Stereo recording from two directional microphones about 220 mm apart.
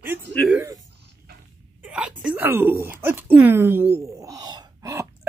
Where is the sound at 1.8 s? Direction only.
5° right (ahead or behind).